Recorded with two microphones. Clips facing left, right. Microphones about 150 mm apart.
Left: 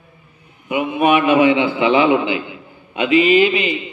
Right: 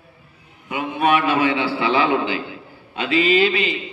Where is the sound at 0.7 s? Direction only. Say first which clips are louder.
Left 4 dB; 10° left (ahead or behind).